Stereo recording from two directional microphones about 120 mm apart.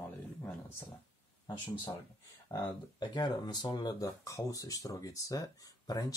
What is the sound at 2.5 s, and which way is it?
Speech, 40° left (ahead or behind).